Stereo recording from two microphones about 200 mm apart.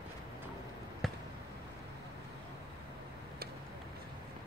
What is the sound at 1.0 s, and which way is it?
Basketball bounce, centre (ahead or behind).